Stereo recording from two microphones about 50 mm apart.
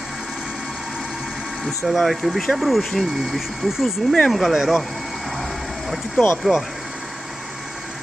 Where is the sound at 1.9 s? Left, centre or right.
Centre.